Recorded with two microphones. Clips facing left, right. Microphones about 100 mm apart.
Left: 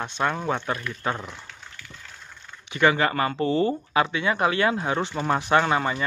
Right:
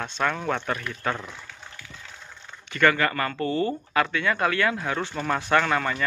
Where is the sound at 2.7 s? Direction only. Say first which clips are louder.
Left 1 dB; 15° left (ahead or behind).